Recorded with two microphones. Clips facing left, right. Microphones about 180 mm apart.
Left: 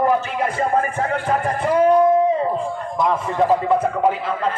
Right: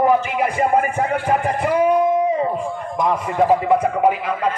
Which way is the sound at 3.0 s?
15° right (ahead or behind).